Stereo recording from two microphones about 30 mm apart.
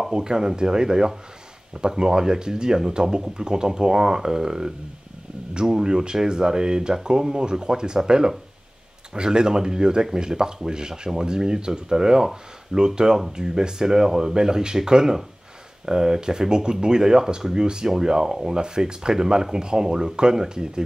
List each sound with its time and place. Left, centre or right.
0.1 s speech: right
9.1 s speech: right